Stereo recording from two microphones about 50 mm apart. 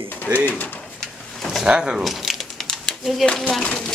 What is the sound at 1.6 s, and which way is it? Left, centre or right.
Speech, centre.